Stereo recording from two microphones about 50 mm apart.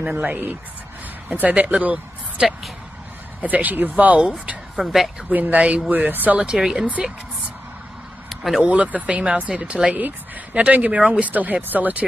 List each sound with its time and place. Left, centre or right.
0.3 s speech: right; by 4.8 s centre
5.3 s speech: right
6.3 s speech: right
6.6 s speech: centre
8.6 s speech: right